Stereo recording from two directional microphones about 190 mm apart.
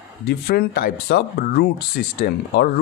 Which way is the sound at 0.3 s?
55° left (ahead or behind).